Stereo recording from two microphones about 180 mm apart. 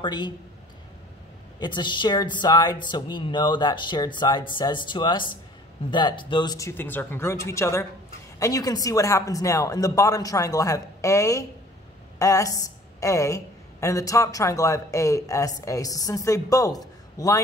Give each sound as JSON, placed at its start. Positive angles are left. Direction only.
{"t": 0.0, "sound": "speech", "side_deg": 25}
{"t": 1.6, "sound": "a woman's voice", "side_deg": 25}